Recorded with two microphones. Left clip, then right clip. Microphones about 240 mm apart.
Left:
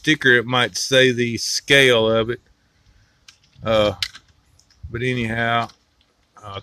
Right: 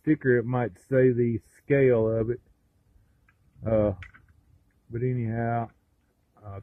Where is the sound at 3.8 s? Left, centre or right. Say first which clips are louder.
Left 8 dB; centre.